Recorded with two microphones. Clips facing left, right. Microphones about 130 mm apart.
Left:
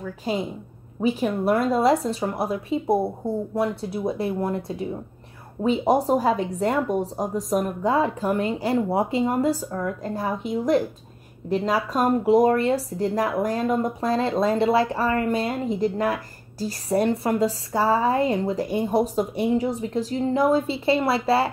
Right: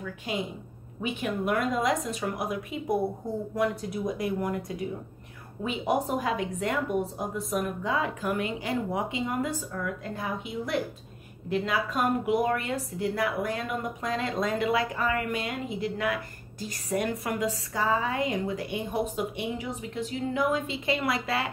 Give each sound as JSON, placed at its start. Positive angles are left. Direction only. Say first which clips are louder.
{"t": 0.2, "sound": "a woman's voice", "louder": "left 7 dB", "side_deg": 35}